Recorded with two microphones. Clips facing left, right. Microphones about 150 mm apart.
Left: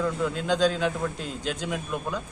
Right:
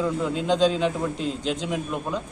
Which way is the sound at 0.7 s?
Centre (ahead or behind).